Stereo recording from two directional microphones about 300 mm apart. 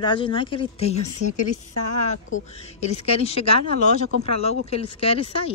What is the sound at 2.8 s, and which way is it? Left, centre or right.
A woman's voice, left.